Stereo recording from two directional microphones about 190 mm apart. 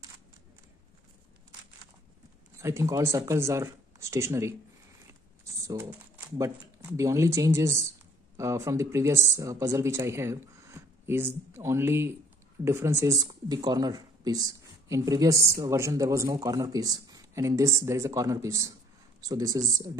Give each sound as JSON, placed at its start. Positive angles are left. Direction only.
{"t": 2.6, "sound": "speech", "side_deg": -15}
{"t": 5.4, "sound": "typing", "side_deg": -15}
{"t": 5.9, "sound": "a sound", "side_deg": -5}
{"t": 6.3, "sound": "speech", "side_deg": -15}